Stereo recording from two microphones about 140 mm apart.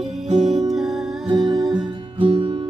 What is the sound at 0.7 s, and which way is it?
Music, 5° right (ahead or behind).